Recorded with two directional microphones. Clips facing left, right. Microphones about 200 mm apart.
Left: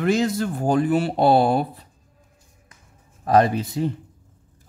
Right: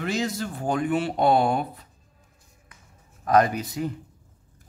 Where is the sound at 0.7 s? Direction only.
35° left (ahead or behind).